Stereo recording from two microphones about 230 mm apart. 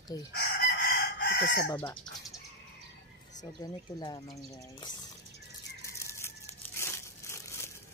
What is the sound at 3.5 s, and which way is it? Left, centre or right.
Speech, centre.